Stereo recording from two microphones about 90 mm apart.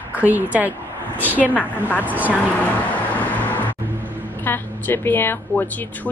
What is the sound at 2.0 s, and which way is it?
Speech, 20° right (ahead or behind).